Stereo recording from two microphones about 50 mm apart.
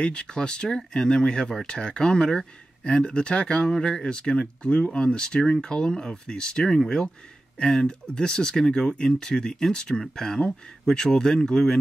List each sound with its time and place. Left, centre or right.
0.0 s speech: left